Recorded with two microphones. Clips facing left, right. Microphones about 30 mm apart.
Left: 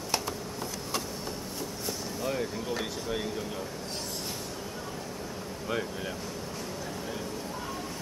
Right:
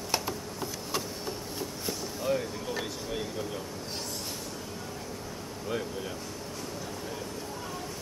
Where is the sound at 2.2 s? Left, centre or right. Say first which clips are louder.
Right 2 dB; centre.